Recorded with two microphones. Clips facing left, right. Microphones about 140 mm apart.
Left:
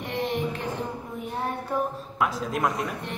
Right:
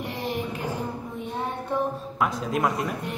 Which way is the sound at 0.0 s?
Centre (ahead or behind).